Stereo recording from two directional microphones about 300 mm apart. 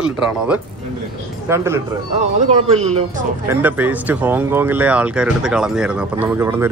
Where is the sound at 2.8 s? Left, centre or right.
Right.